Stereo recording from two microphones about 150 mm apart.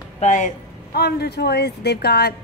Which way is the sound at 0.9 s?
90° left.